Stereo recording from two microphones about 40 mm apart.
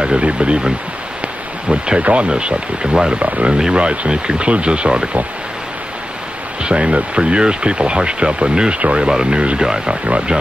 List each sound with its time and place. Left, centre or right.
0.2 s speech: right
1.7 s speech: right
6.6 s speech: right
10.0 s speech: right